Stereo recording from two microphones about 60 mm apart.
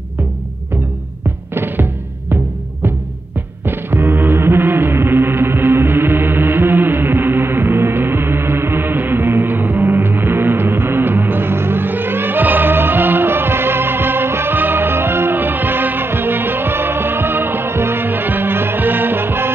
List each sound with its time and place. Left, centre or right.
1.5 s music: right
3.6 s music: right